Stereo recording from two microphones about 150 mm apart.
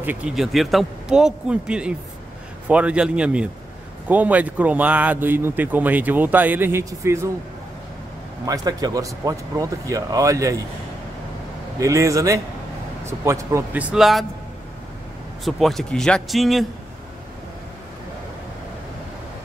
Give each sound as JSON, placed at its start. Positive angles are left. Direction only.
{"t": 0.0, "sound": "a man's voice", "side_deg": -15}
{"t": 0.4, "sound": "a man's voice", "side_deg": 0}
{"t": 8.5, "sound": "speech", "side_deg": -25}
{"t": 11.8, "sound": "speech", "side_deg": -20}
{"t": 13.7, "sound": "a man's voice", "side_deg": 0}
{"t": 15.4, "sound": "a man's voice", "side_deg": 0}